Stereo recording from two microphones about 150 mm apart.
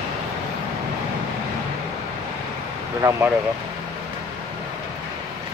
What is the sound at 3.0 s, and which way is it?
Speech, 20° right (ahead or behind).